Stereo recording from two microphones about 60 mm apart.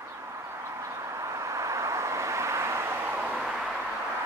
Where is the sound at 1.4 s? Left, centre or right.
Right.